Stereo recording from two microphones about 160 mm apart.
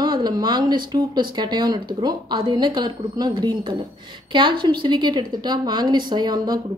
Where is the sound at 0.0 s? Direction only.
25° right (ahead or behind).